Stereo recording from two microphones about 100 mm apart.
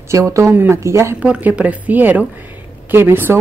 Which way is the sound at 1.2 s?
15° right (ahead or behind).